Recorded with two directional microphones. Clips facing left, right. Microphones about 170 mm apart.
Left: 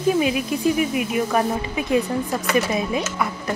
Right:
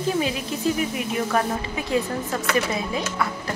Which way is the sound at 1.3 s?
20° left (ahead or behind).